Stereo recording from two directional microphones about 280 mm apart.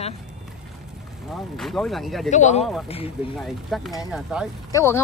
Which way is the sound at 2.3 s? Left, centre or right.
Left.